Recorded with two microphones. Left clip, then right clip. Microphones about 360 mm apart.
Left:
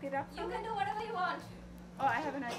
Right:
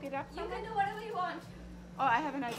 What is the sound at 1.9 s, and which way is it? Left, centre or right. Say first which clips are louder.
Speech: right 3 dB; centre.